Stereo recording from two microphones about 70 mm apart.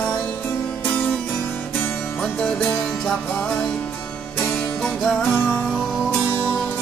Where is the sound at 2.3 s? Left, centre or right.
Centre.